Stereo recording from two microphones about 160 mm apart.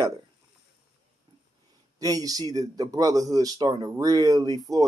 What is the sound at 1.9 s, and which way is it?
Speech, 25° right (ahead or behind).